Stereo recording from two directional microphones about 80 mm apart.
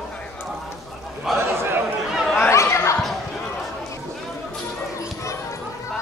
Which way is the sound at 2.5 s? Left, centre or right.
Left.